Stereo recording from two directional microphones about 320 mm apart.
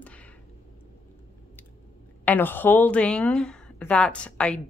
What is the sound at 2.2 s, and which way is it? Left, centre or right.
Speech, centre.